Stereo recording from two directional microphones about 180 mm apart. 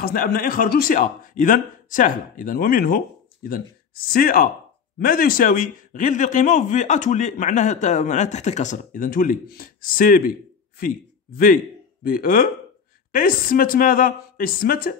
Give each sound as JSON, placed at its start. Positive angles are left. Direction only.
{"t": 0.0, "sound": "a man's voice", "side_deg": 55}